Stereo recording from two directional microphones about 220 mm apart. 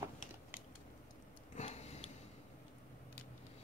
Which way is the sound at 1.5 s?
30° left (ahead or behind).